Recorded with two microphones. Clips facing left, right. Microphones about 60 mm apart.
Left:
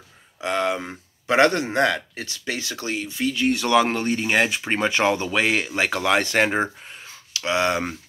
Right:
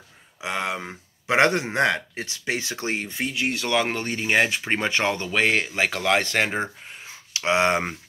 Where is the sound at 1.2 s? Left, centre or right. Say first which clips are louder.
Left 2 dB; centre; by 3.3 s right.